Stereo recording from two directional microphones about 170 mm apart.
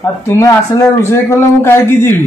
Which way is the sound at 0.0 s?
15° left (ahead or behind).